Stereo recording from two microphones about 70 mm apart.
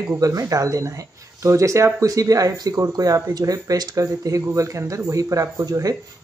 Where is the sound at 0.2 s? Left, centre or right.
Right.